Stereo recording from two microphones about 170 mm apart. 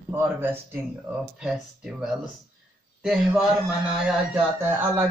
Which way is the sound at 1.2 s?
5° right (ahead or behind).